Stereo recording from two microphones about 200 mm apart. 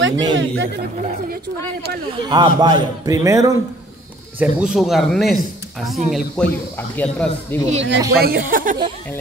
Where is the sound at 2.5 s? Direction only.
20° right (ahead or behind).